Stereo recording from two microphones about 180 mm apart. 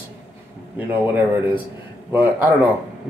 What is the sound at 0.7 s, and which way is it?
Speech, 10° right (ahead or behind).